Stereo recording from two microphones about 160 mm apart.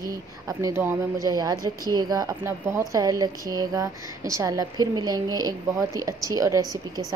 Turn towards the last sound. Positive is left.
turn(degrees=-20)  # may be behind; listen again after turning